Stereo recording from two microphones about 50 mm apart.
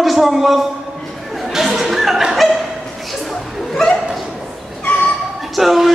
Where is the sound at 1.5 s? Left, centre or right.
Centre.